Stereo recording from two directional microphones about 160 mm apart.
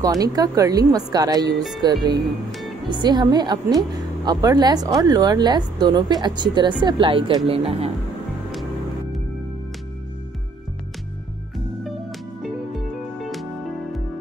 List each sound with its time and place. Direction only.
0.0 s a woman's voice: 20° right (ahead or behind)
12.4 s music: centre (ahead or behind)